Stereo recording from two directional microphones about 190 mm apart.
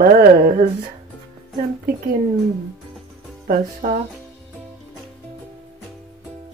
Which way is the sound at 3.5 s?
45° right (ahead or behind).